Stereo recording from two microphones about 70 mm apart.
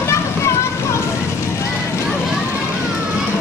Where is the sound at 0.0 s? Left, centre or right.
Left.